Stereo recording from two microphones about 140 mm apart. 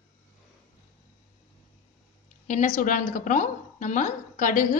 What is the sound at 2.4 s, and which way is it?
A woman's voice, 60° left (ahead or behind).